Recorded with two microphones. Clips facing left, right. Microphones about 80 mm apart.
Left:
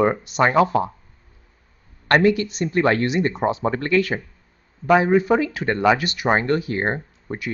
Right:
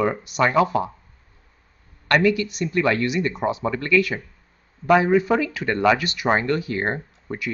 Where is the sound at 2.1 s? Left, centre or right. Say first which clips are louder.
Left 2 dB; left.